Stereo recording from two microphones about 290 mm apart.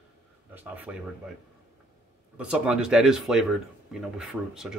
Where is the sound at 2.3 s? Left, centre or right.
Centre.